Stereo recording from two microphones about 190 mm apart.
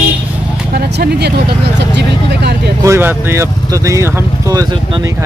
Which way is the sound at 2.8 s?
15° right (ahead or behind).